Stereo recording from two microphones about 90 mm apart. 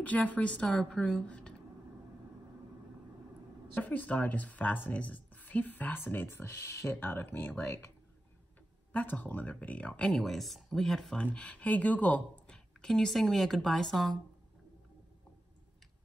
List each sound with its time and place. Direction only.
0.0 s speech: 15° left (ahead or behind)
3.7 s speech: 20° left (ahead or behind)
8.9 s speech: 15° left (ahead or behind)
10.2 s a woman's voice: centre (ahead or behind)
11.3 s speech: 15° left (ahead or behind)
12.5 s a woman's voice: 5° left (ahead or behind)